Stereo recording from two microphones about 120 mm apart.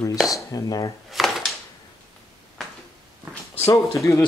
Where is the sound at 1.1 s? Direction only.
Centre (ahead or behind).